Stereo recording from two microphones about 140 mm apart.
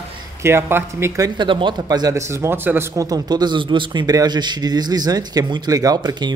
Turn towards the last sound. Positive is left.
turn(degrees=-30)  # may be behind; listen again after turning